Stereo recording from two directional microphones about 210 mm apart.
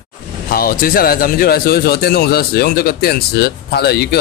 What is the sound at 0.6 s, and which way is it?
Speech, 45° left (ahead or behind).